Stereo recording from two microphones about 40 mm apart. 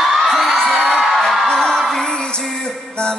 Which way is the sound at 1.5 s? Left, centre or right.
Centre.